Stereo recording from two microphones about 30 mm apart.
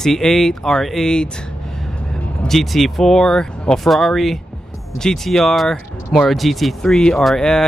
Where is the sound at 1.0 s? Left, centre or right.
Left.